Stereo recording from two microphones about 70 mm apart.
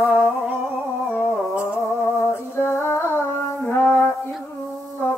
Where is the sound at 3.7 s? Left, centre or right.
Left.